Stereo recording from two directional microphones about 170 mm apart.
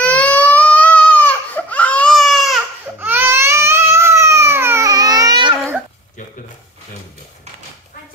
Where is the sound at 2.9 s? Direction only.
10° right (ahead or behind).